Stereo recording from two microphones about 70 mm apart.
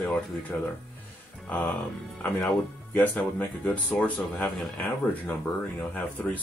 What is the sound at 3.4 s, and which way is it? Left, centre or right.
Speech, left.